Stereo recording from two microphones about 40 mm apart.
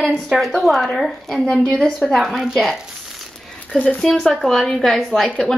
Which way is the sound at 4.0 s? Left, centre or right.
Centre.